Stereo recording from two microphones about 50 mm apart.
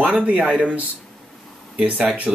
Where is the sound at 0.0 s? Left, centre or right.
Right.